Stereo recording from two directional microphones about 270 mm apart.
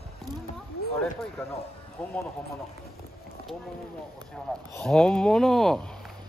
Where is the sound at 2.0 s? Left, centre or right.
Centre.